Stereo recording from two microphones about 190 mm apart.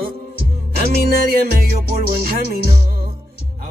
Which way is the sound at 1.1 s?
50° right (ahead or behind).